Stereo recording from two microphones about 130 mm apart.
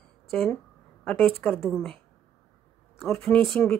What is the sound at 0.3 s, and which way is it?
A woman's voice, 5° left (ahead or behind).